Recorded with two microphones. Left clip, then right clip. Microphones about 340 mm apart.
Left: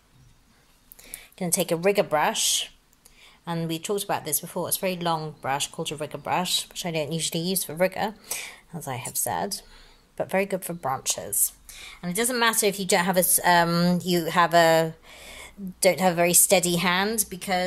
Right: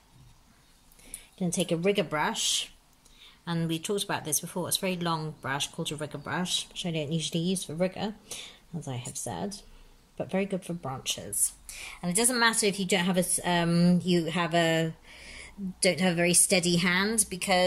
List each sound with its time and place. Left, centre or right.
1.4 s speech: left
2.0 s speech: centre
6.7 s speech: left
11.4 s a woman's voice: centre
12.6 s a woman's voice: centre
13.2 s speech: left
14.7 s a sound: centre
16.2 s a woman's voice: centre